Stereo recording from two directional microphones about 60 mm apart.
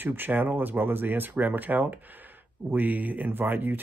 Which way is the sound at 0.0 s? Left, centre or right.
Right.